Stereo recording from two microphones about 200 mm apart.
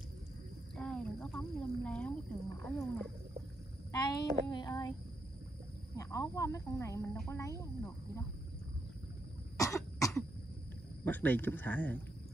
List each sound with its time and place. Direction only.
0.7 s speech: 5° left (ahead or behind)
3.9 s a woman's voice: 20° left (ahead or behind)
5.9 s speech: 15° left (ahead or behind)
9.6 s cough: 15° left (ahead or behind)
11.1 s speech: 10° left (ahead or behind)